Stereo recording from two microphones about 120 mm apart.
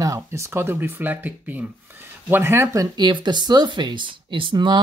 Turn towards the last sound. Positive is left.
turn(degrees=-40)  # may be behind; listen again after turning